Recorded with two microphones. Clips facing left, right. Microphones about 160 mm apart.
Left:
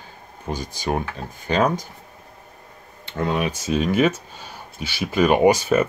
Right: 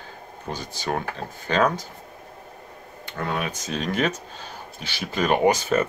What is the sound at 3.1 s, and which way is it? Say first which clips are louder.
Speech: left 5 dB; 20° left (ahead or behind).